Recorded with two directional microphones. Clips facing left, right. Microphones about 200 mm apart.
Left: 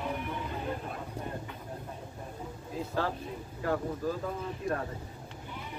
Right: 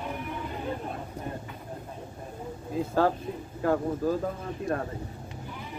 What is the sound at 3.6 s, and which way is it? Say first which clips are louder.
Speech: right 5 dB; 45° right (ahead or behind).